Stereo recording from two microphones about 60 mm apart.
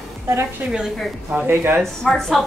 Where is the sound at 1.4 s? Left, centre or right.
Right.